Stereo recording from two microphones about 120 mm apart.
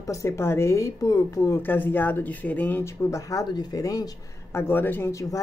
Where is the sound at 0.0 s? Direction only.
25° left (ahead or behind).